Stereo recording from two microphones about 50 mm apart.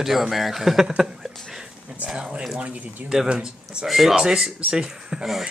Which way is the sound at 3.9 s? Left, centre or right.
Centre.